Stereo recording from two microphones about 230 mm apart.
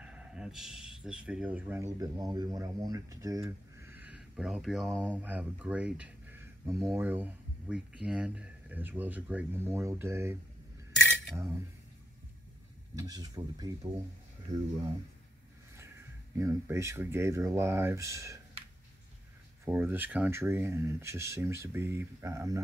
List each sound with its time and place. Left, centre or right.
0.0 s speech: centre
11.1 s cutlery: centre
13.0 s speech: centre
16.3 s speech: centre
19.6 s speech: centre